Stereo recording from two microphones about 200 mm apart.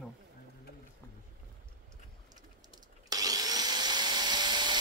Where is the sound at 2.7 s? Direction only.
20° right (ahead or behind).